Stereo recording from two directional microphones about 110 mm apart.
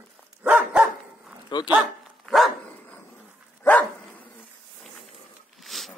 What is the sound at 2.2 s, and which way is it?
Dog, centre (ahead or behind).